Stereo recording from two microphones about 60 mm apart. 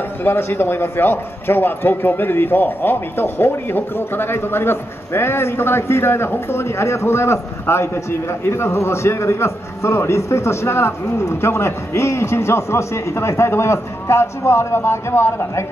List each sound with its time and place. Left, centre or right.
0.2 s a man's voice: left